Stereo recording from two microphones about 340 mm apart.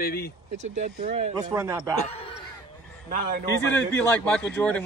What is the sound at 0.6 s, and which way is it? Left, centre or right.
Speech, right.